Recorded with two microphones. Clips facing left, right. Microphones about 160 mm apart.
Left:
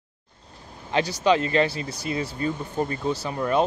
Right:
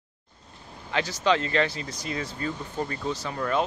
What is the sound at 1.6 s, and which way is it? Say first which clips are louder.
Speech: left 4 dB; 30° left (ahead or behind).